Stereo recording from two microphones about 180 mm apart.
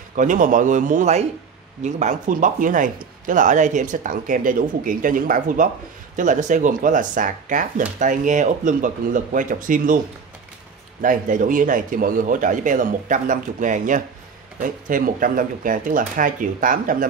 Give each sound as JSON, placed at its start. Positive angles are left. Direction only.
{"t": 0.1, "sound": "speech", "side_deg": -45}
{"t": 11.0, "sound": "speech", "side_deg": -45}